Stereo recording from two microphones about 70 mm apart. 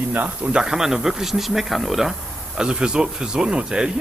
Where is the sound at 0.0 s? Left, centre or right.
Right.